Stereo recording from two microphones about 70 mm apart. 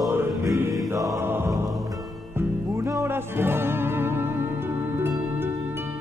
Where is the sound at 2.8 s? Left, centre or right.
Right.